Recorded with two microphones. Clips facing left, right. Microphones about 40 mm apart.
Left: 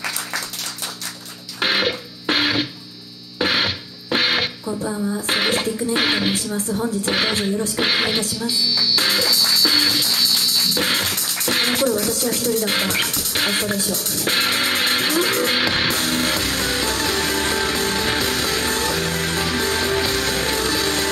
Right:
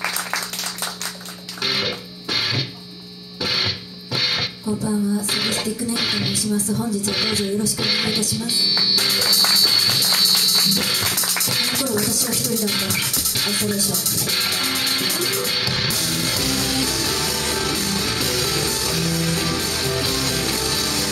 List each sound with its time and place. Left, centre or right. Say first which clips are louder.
1.6 s music: left 4 dB; left
4.6 s a sound: right 2 dB; left
5.2 s speech: left 3 dB; left
8.4 s speech: even; centre
8.9 s music: left 2 dB; left
9.3 s music: even; centre
10.8 s music: left 2 dB; left